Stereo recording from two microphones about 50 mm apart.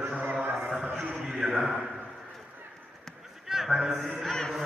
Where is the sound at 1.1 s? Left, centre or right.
Centre.